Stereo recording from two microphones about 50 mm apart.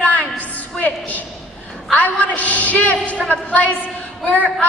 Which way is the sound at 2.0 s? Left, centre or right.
Left.